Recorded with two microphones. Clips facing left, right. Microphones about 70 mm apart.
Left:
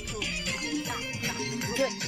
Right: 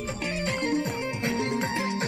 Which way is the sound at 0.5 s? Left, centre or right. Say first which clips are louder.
Right 6 dB; right.